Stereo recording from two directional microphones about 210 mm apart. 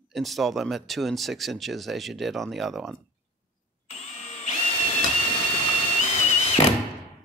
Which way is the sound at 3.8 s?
30° left (ahead or behind).